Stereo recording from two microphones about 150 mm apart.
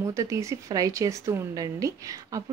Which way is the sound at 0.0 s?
20° right (ahead or behind).